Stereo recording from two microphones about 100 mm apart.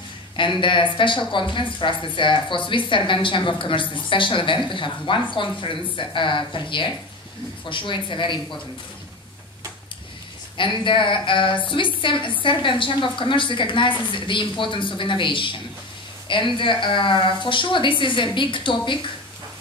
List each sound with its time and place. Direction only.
0.4 s speech: 55° left (ahead or behind)
10.6 s speech: 55° left (ahead or behind)